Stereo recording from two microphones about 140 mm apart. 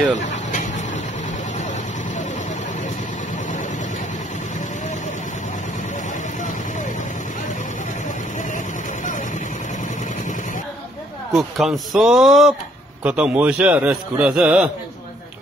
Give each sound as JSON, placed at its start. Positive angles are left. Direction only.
{"t": 0.3, "sound": "dog", "side_deg": 60}
{"t": 11.3, "sound": "a sound", "side_deg": 0}
{"t": 13.0, "sound": "a man's voice", "side_deg": -10}